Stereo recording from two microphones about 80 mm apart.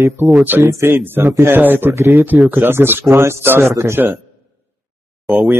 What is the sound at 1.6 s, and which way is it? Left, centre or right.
Speech, right.